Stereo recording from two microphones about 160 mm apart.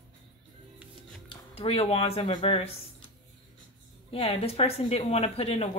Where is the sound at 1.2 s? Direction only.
35° left (ahead or behind).